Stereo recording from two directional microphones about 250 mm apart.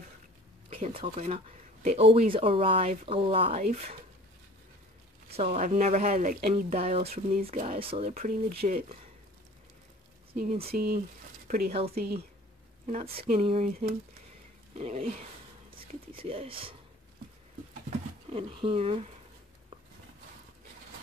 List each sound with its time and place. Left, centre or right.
0.7 s speech: right
5.3 s speech: right
10.3 s speech: right
12.8 s speech: right
17.8 s speech: right